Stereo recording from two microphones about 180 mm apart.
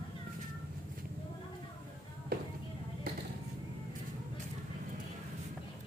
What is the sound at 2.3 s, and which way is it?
Music, 55° right (ahead or behind).